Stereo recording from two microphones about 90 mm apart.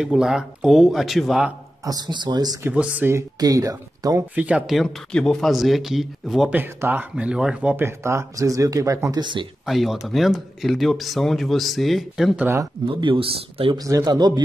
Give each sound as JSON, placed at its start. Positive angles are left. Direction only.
{"t": 0.0, "sound": "speech", "side_deg": -5}
{"t": 1.9, "sound": "speech", "side_deg": -50}
{"t": 2.7, "sound": "speech", "side_deg": -15}
{"t": 3.3, "sound": "speech", "side_deg": -40}
{"t": 4.4, "sound": "speech", "side_deg": -15}
{"t": 4.6, "sound": "speech", "side_deg": 0}
{"t": 6.5, "sound": "speech", "side_deg": -20}
{"t": 7.7, "sound": "speech", "side_deg": -30}
{"t": 9.2, "sound": "speech", "side_deg": -60}
{"t": 9.7, "sound": "speech", "side_deg": 0}
{"t": 12.8, "sound": "speech", "side_deg": -75}
{"t": 13.7, "sound": "speech", "side_deg": -40}